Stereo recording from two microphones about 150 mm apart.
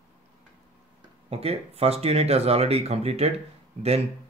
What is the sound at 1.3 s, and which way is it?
Speech, 45° right (ahead or behind).